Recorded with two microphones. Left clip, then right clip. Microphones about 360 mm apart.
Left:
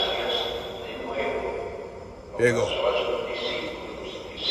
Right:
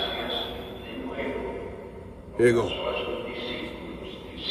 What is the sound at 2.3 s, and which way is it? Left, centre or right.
Speech, centre.